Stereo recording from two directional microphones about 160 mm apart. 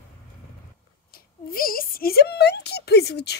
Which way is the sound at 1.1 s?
65° left (ahead or behind).